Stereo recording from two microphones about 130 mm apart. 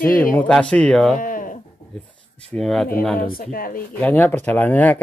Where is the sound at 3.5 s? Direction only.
90° left.